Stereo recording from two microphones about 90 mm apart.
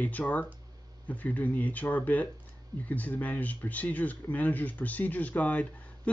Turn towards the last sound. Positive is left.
turn(degrees=15)  # may be behind; listen again after turning